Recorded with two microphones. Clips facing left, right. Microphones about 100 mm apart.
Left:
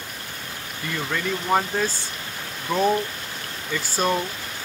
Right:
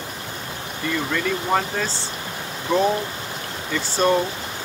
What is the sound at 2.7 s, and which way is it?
Speech, 20° right (ahead or behind).